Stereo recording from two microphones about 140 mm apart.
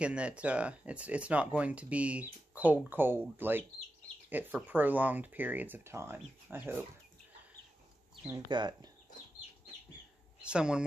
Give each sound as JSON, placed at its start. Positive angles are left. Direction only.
{"t": 0.0, "sound": "speech", "side_deg": -10}
{"t": 8.5, "sound": "speech", "side_deg": -30}
{"t": 10.4, "sound": "speech", "side_deg": -5}